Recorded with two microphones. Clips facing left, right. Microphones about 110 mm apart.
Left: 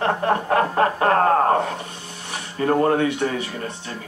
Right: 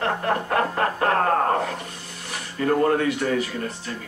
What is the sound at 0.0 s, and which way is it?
Snicker, 30° left (ahead or behind).